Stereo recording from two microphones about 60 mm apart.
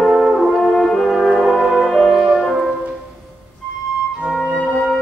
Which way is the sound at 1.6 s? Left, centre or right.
Centre.